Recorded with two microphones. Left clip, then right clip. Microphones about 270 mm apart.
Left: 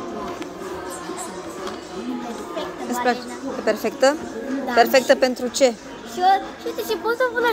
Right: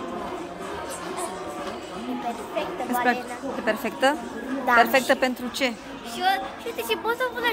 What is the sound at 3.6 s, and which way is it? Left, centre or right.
Speech, centre.